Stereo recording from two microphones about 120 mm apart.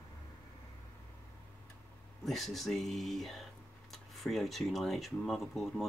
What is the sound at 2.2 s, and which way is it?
Speech, centre (ahead or behind).